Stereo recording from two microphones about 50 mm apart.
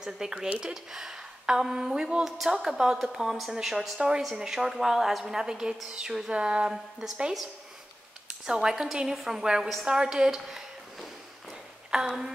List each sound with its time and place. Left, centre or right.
0.0 s a woman's voice: centre
2.2 s a woman's voice: centre
5.9 s a sound: centre
6.7 s a woman's voice: centre
8.3 s a woman's voice: centre